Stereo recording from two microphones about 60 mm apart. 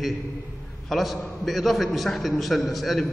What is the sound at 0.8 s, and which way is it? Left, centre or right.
A man's voice, centre.